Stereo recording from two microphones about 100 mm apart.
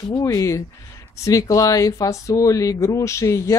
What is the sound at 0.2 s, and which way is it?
Speech, 35° left (ahead or behind).